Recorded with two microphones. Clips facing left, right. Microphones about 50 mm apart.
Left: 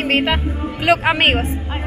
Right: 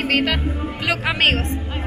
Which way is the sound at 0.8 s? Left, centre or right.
Left.